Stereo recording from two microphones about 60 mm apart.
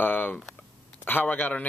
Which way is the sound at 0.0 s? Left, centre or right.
Left.